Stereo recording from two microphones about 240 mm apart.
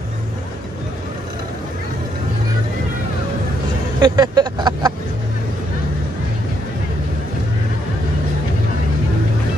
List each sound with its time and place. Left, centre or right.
4.0 s vehicle: centre